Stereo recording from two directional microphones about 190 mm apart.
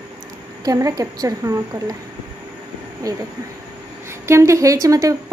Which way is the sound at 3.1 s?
20° right (ahead or behind).